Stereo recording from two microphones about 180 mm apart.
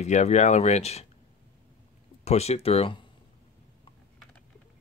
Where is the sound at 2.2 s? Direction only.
35° left (ahead or behind).